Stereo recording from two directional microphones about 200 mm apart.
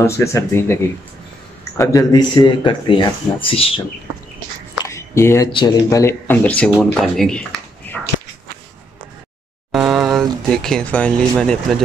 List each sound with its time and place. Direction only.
0.0 s speech: 15° left (ahead or behind)
1.8 s speech: 15° left (ahead or behind)
4.8 s a sound: 15° left (ahead or behind)
5.5 s speech: 20° left (ahead or behind); by 8.0 s 5° left (ahead or behind)
9.7 s a sound: centre (ahead or behind)
10.5 s speech: 5° left (ahead or behind)